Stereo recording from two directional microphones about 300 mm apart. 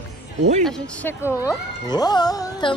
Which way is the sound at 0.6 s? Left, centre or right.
Centre.